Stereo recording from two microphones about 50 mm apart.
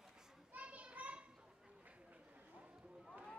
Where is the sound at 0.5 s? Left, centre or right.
Right.